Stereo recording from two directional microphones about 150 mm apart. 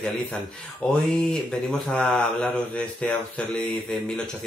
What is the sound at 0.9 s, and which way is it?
Speech, 5° left (ahead or behind).